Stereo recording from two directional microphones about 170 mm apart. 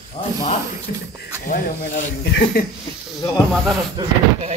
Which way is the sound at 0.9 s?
55° left (ahead or behind).